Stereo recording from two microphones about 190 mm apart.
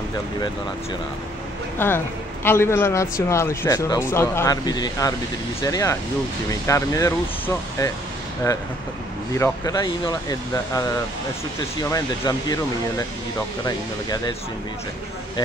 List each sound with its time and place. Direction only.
1.8 s a man's voice: 10° left (ahead or behind)
9.3 s a man's voice: 15° left (ahead or behind)
11.9 s speech: 20° left (ahead or behind)